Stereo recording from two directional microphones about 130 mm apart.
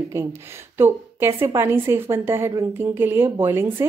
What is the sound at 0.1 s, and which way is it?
A woman's voice, 20° right (ahead or behind).